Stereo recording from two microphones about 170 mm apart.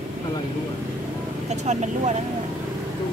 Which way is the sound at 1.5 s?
40° right (ahead or behind).